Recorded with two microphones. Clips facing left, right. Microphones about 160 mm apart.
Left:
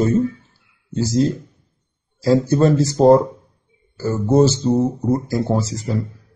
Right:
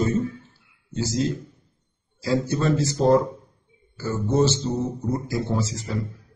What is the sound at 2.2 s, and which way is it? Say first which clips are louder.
A man's voice: left 8 dB; 40° left (ahead or behind).